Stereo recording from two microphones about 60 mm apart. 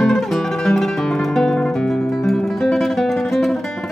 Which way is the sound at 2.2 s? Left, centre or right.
Centre.